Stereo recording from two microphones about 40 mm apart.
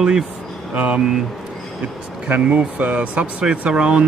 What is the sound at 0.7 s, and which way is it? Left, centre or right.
Speech, right.